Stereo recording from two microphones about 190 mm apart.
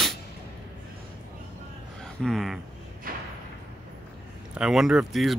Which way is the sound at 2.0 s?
Centre (ahead or behind).